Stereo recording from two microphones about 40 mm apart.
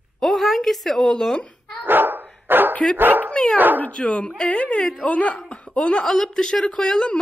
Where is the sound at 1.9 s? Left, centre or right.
Right.